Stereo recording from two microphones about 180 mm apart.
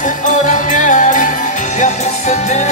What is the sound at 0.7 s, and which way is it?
Music, 45° left (ahead or behind).